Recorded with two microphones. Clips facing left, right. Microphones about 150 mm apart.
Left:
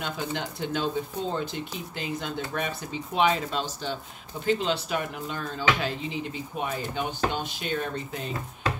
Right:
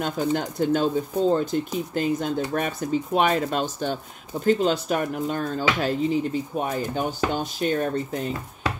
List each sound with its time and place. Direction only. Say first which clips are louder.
0.0 s speech: right 7 dB; 45° right (ahead or behind)